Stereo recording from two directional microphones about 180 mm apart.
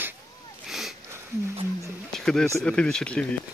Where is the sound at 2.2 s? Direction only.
5° left (ahead or behind).